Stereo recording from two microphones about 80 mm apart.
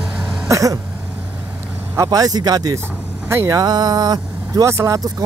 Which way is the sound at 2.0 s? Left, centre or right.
Right.